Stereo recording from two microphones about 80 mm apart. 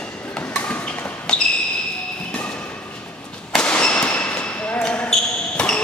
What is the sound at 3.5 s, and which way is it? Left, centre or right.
Basketball bounce, centre.